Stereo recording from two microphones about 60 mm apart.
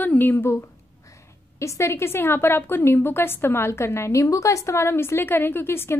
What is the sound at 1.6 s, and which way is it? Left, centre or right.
A woman's voice, left.